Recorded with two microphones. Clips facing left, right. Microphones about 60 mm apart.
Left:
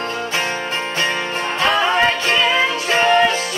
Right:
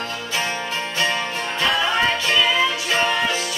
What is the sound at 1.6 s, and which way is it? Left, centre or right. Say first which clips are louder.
Music: left 4 dB; left.